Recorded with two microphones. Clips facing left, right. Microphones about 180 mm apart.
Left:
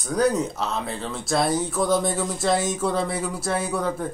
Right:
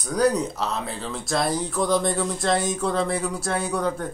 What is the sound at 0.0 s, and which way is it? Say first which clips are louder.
Speech: even; centre (ahead or behind).